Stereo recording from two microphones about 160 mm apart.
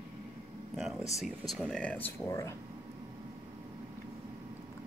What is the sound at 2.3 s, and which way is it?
Speech, 20° left (ahead or behind).